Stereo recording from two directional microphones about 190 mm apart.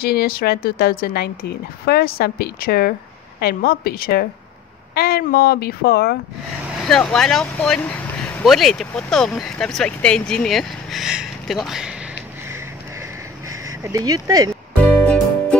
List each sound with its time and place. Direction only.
0.0 s a woman's voice: 55° left (ahead or behind)
6.8 s speech: 5° left (ahead or behind)
13.7 s speech: 15° right (ahead or behind)
14.8 s music: 5° left (ahead or behind)